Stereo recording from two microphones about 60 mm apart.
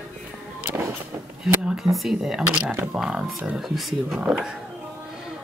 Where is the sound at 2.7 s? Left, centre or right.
Right.